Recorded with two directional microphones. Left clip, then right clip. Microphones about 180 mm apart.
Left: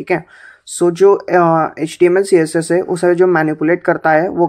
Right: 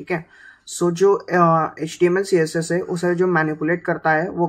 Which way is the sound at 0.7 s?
40° left (ahead or behind).